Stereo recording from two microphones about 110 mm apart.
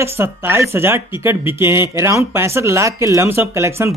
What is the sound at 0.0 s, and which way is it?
Speech, 25° right (ahead or behind).